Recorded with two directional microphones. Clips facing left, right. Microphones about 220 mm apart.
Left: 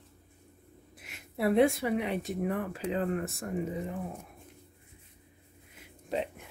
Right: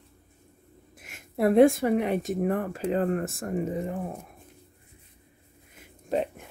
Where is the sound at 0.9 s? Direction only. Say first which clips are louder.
Right 6 dB; 50° right (ahead or behind).